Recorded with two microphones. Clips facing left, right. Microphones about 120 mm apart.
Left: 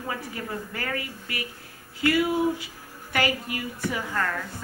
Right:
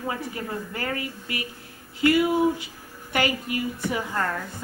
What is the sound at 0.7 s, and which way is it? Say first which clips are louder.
A woman's voice: right 2 dB; 25° right (ahead or behind).